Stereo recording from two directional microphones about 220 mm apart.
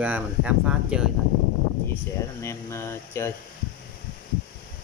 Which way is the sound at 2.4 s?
10° left (ahead or behind).